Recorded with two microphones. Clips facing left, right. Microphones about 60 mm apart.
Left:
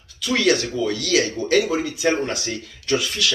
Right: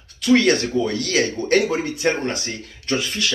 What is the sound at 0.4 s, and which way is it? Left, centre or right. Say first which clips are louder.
Speech: right 1 dB; right.